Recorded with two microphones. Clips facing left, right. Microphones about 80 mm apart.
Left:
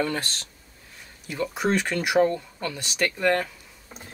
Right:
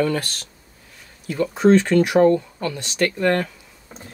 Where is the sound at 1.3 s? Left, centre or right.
Centre.